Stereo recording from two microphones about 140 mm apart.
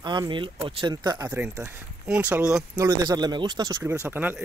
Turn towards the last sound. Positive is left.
turn(degrees=-15)  # may be behind; listen again after turning